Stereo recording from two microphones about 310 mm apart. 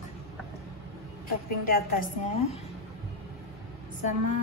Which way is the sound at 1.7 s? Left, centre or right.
Left.